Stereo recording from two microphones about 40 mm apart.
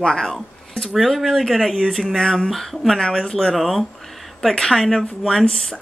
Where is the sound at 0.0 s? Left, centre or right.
Centre.